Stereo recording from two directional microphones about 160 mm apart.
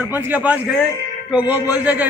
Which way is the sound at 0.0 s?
10° right (ahead or behind).